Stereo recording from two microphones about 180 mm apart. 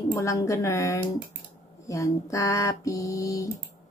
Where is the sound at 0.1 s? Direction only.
15° left (ahead or behind).